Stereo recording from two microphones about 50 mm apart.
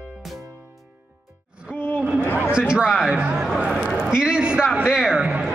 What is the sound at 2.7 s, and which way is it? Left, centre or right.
Music, centre.